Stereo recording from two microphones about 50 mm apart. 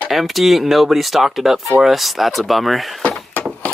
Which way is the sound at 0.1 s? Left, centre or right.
Centre.